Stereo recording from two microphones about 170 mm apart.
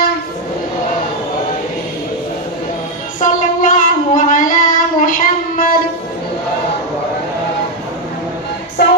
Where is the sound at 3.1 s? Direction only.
50° left (ahead or behind).